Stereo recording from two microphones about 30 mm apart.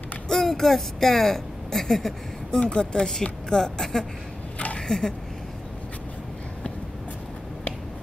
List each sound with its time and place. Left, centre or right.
0.3 s speech: centre
2.7 s speech: left
4.7 s a sound: left